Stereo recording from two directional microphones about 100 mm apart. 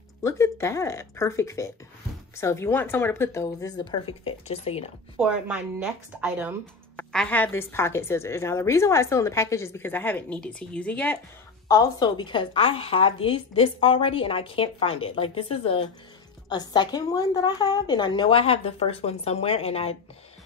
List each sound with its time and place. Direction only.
0.2 s a woman's voice: 30° left (ahead or behind)
3.6 s a woman's voice: 45° left (ahead or behind); by 4.9 s 85° left
5.2 s speech: 15° right (ahead or behind)
7.1 s a woman's voice: 5° left (ahead or behind)
7.3 s a woman's voice: 20° left (ahead or behind)
11.6 s a woman's voice: 35° left (ahead or behind)
12.2 s a woman's voice: 55° left (ahead or behind); by 15.8 s 75° left (ahead or behind)
16.4 s a woman's voice: 45° left (ahead or behind); by 19.9 s 85° left